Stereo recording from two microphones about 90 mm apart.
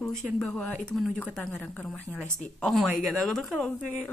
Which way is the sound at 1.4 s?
20° left (ahead or behind).